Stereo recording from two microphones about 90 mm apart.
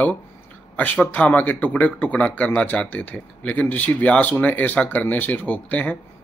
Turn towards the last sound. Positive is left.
turn(degrees=15)  # may be behind; listen again after turning